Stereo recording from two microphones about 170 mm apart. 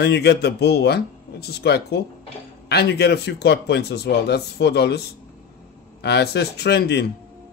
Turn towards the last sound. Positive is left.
turn(degrees=75)  # may be behind; listen again after turning